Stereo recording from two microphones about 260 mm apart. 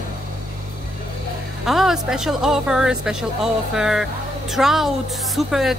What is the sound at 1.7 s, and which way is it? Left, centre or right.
A woman's voice, centre.